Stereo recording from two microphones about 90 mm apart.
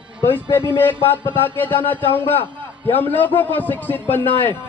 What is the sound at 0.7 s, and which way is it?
Speech, 25° left (ahead or behind).